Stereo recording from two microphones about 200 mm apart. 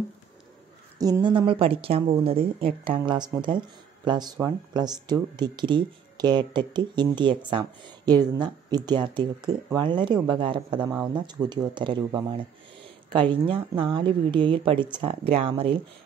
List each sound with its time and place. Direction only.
0.9 s speech: 20° right (ahead or behind)